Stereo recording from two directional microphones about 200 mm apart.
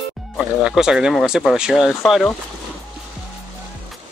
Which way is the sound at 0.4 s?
5° right (ahead or behind).